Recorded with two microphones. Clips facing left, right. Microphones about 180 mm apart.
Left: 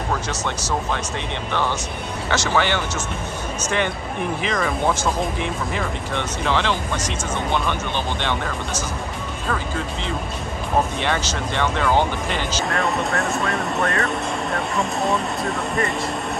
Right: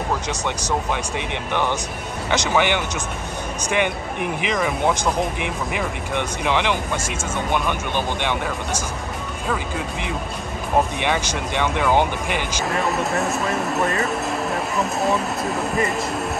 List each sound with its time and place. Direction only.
0.3 s speech: 15° right (ahead or behind)
11.1 s speech: 15° right (ahead or behind)
12.6 s speech: centre (ahead or behind)